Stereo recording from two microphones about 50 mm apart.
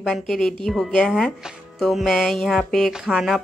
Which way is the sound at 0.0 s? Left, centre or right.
Centre.